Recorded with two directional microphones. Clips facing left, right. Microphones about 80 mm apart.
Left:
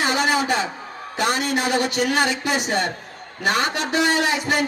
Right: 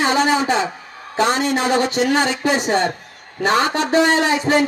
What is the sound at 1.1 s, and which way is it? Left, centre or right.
A man's voice, right.